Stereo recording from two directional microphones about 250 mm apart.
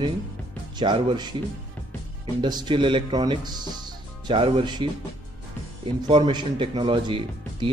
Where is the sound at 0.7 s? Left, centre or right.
Centre.